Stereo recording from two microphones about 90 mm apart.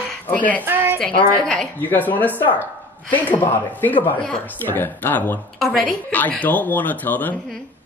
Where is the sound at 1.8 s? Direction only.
20° left (ahead or behind).